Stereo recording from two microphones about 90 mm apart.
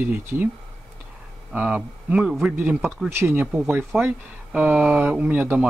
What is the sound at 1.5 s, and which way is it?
Speech, 15° right (ahead or behind).